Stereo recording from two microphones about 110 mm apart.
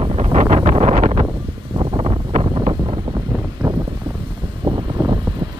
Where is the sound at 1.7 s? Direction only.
55° right (ahead or behind).